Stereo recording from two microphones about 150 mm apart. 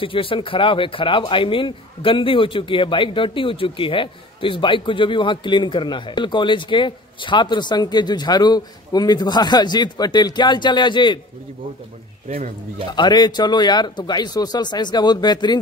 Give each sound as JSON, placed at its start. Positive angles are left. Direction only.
{"t": 0.0, "sound": "speech", "side_deg": 35}
{"t": 12.3, "sound": "speech", "side_deg": -40}
{"t": 12.9, "sound": "speech", "side_deg": 30}